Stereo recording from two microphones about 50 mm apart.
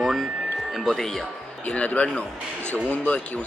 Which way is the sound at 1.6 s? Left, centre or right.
Left.